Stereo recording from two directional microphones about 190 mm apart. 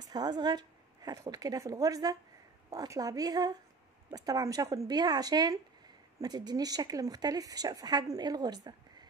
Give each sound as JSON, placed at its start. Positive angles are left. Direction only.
{"t": 0.1, "sound": "speech", "side_deg": -20}